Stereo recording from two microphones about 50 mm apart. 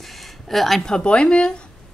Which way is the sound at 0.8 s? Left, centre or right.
Centre.